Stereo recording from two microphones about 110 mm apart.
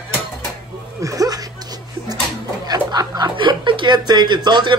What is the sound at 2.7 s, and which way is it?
Speech, 35° right (ahead or behind).